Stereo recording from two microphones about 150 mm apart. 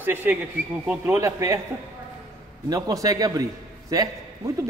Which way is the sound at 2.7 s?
25° right (ahead or behind).